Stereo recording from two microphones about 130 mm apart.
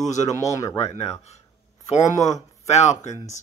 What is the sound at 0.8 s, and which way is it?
Speech, 55° left (ahead or behind).